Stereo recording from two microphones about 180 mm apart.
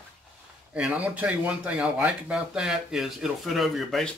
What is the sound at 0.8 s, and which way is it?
Speech, 5° right (ahead or behind).